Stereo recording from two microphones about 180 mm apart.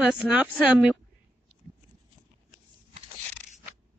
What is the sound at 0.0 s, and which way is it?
Speech, 5° right (ahead or behind).